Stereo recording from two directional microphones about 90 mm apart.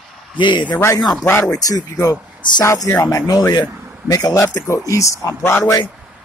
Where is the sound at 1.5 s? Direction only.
45° left (ahead or behind).